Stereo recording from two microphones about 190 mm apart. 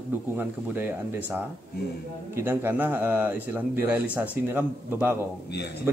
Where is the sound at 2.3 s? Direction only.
10° right (ahead or behind).